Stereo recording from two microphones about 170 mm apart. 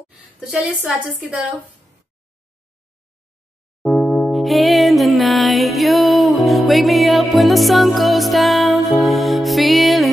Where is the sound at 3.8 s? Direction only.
Centre (ahead or behind).